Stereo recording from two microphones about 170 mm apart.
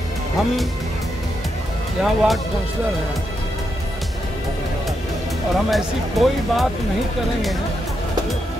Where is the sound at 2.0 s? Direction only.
Centre (ahead or behind).